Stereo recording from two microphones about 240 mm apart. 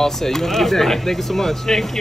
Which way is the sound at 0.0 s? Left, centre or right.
Centre.